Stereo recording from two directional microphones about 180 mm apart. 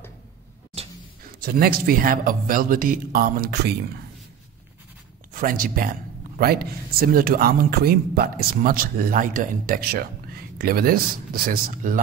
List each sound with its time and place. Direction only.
0.8 s a sound: 35° right (ahead or behind)
1.4 s speech: 55° right (ahead or behind)
5.3 s speech: 50° right (ahead or behind)